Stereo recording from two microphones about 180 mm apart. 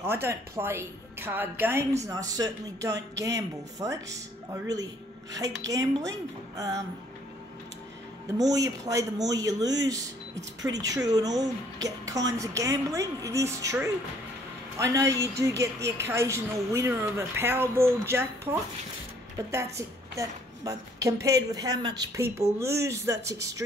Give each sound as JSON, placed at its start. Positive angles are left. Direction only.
{"t": 0.0, "sound": "speech", "side_deg": -10}
{"t": 8.4, "sound": "a woman's voice", "side_deg": -20}